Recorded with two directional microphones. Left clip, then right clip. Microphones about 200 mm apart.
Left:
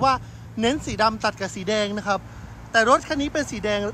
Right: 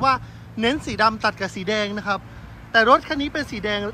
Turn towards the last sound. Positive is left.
turn(degrees=5)  # may be behind; listen again after turning